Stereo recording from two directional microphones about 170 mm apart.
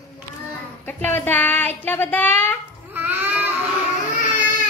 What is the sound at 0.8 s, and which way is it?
Speech, 10° left (ahead or behind).